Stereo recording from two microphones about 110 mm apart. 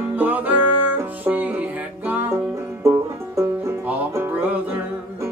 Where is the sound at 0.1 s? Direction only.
15° right (ahead or behind).